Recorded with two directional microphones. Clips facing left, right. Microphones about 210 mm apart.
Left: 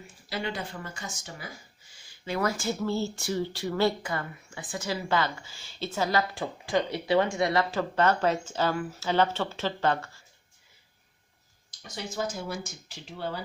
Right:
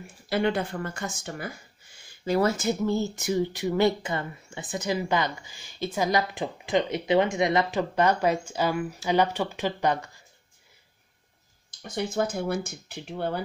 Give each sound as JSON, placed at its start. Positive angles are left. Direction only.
{"t": 0.3, "sound": "speech", "side_deg": -55}
{"t": 2.4, "sound": "speech", "side_deg": -20}
{"t": 11.8, "sound": "speech", "side_deg": -55}